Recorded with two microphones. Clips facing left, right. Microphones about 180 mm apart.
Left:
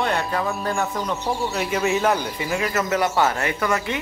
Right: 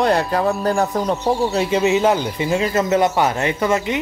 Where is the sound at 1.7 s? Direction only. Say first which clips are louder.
Right 4 dB; 20° right (ahead or behind).